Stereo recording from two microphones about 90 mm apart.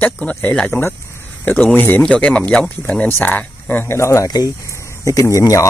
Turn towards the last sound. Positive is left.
turn(degrees=35)  # may be behind; listen again after turning